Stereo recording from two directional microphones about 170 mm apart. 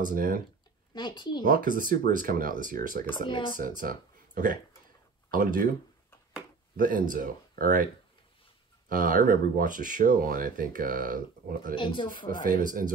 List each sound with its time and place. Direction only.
0.0 s speech: 55° right (ahead or behind)
0.9 s speech: 25° left (ahead or behind)
1.4 s speech: 55° right (ahead or behind)
3.3 s speech: 30° left (ahead or behind)
3.5 s speech: 55° right (ahead or behind)
6.8 s speech: 55° right (ahead or behind)
11.7 s speech: 30° left (ahead or behind)
12.4 s speech: 55° right (ahead or behind)